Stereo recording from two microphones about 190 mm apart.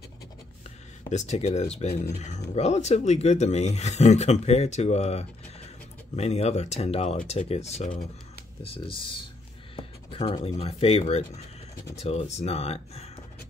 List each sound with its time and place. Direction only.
1.1 s speech: 35° left (ahead or behind)
9.8 s a sound: 30° left (ahead or behind)
10.6 s speech: 30° left (ahead or behind)